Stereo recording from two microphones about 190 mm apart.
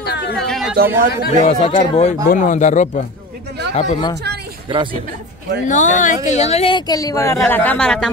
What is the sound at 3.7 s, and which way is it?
Speech, 25° left (ahead or behind).